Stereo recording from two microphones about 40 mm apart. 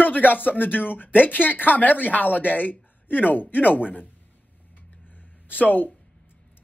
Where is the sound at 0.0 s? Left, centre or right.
Left.